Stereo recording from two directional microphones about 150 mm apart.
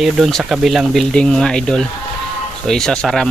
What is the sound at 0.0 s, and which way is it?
Speech, centre (ahead or behind).